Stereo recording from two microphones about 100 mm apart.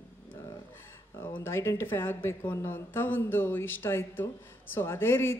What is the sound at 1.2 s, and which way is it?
Speech, 20° left (ahead or behind).